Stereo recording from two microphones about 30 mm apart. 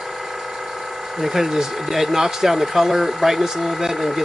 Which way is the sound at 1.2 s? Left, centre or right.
Centre.